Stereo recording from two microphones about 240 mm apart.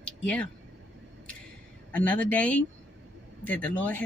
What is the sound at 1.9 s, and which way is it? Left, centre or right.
Speech, centre.